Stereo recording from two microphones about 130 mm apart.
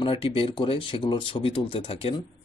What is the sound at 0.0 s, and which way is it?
Speech, 45° left (ahead or behind).